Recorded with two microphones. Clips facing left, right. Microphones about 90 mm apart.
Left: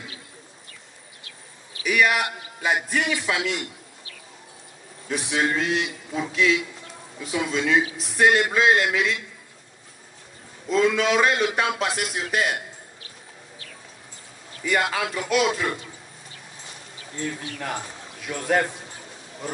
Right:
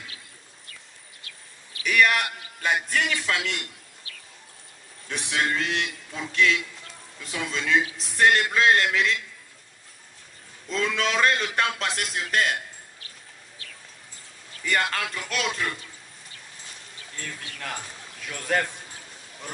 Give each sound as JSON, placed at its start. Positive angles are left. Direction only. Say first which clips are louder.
{"t": 1.8, "sound": "a man's voice", "louder": "left 1 dB", "side_deg": 10}
{"t": 5.0, "sound": "a man's voice", "louder": "left 3 dB", "side_deg": 10}
{"t": 10.7, "sound": "a man's voice", "louder": "left 6 dB", "side_deg": 10}
{"t": 14.6, "sound": "a man's voice", "louder": "left 3 dB", "side_deg": 10}
{"t": 17.1, "sound": "a man's voice", "louder": "left 8 dB", "side_deg": 15}